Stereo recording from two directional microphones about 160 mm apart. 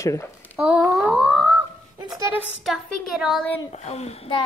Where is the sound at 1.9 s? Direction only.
25° right (ahead or behind).